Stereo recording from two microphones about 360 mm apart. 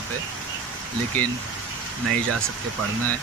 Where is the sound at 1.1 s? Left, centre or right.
Centre.